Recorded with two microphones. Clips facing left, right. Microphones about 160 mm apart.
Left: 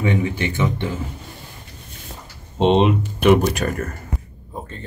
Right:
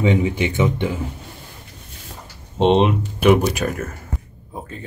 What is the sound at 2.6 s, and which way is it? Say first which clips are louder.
Speech: even; centre (ahead or behind).